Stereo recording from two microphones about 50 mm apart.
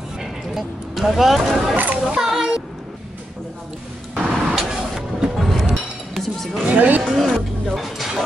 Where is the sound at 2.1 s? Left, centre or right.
Centre.